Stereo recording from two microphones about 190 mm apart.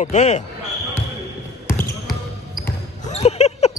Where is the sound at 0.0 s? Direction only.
35° left (ahead or behind).